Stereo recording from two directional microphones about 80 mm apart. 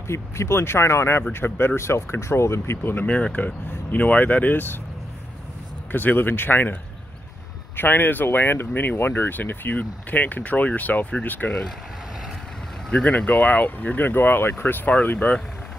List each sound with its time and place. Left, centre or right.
0.1 s speech: left
5.9 s speech: left
12.9 s speech: centre